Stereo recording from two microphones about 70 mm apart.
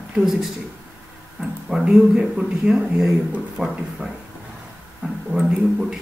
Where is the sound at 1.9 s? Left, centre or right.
Centre.